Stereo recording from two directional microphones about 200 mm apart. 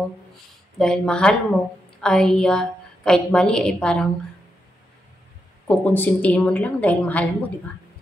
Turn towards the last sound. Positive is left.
turn(degrees=5)  # may be behind; listen again after turning